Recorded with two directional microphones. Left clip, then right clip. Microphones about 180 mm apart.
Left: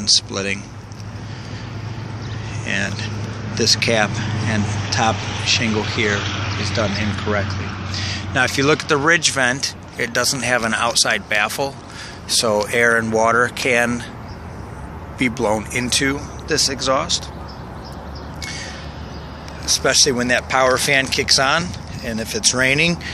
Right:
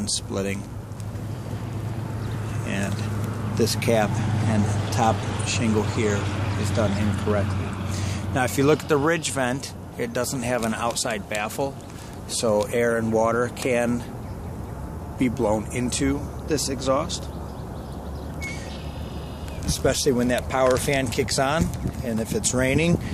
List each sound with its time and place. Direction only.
0.3 s speech: 15° right (ahead or behind)
2.6 s speech: 10° right (ahead or behind)
4.6 s speech: 30° right (ahead or behind)
5.4 s speech: 5° right (ahead or behind)
5.7 s speech: 50° right (ahead or behind)
5.9 s speech: 5° right (ahead or behind)
6.2 s a sound: 50° right (ahead or behind)
6.9 s speech: 55° right (ahead or behind)
7.4 s a sound: 45° right (ahead or behind)
7.9 s speech: 5° right (ahead or behind)
15.1 s speech: 5° right (ahead or behind)
19.6 s speech: 15° right (ahead or behind)